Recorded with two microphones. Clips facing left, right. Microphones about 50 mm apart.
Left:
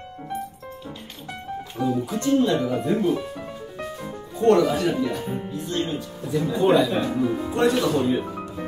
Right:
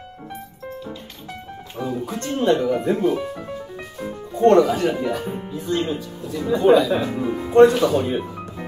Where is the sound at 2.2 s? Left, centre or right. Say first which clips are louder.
Right 1 dB; right.